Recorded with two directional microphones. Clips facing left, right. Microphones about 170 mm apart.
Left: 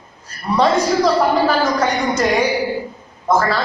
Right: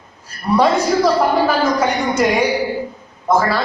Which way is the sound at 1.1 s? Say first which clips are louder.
Even; 10° right (ahead or behind).